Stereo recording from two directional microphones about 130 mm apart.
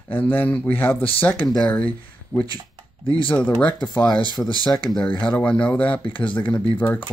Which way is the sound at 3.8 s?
35° left (ahead or behind).